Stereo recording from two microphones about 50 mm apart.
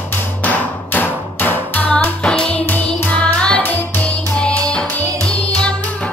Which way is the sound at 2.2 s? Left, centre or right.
Centre.